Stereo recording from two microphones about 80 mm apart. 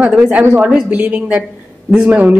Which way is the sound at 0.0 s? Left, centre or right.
Centre.